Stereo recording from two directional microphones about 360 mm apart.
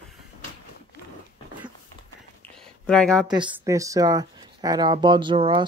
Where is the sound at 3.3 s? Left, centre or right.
Centre.